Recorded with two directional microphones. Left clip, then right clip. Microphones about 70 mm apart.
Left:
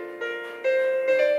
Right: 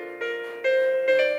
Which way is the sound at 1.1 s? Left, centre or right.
Left.